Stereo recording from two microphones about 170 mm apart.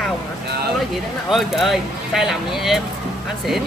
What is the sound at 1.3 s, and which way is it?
Speech, centre (ahead or behind).